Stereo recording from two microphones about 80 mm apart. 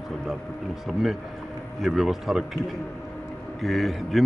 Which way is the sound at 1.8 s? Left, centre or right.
Centre.